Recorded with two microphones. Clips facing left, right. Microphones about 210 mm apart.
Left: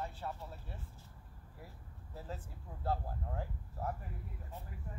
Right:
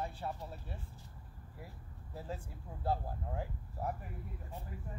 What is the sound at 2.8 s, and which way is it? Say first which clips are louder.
Speech: right 2 dB; 15° right (ahead or behind).